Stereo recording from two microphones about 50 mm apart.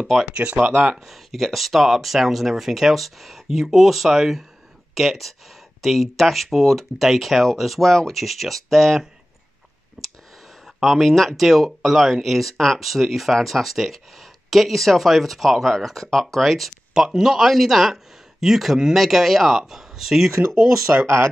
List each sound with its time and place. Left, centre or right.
0.0 s speech: centre
0.4 s speech: right
1.0 s speech: centre
10.0 s a sound: centre
10.8 s speech: centre
20.3 s speech: right
20.9 s speech: right